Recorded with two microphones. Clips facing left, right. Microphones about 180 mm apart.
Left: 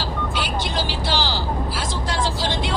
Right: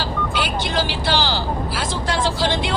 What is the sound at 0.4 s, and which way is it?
Vehicle, 65° right (ahead or behind).